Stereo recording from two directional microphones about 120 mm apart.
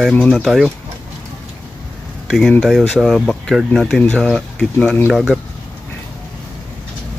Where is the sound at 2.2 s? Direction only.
Centre (ahead or behind).